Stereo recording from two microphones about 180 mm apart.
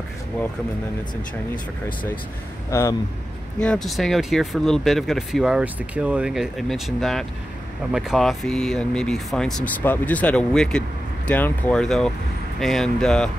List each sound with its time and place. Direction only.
2.7 s speech: 15° left (ahead or behind)
3.5 s speech: 5° left (ahead or behind)